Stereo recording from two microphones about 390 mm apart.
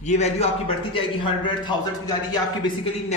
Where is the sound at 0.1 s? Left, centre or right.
Centre.